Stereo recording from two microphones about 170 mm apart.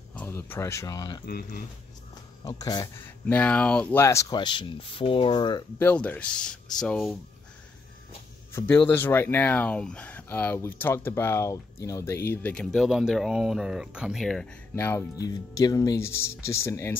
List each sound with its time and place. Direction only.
0.1 s speech: 10° left (ahead or behind)
1.2 s speech: 60° left (ahead or behind)
2.4 s speech: 20° left (ahead or behind)
3.3 s speech: 10° left (ahead or behind); by 5.6 s 30° left (ahead or behind)
5.8 s speech: 10° left (ahead or behind)
8.5 s speech: 10° left (ahead or behind)
14.8 s speech: 15° left (ahead or behind)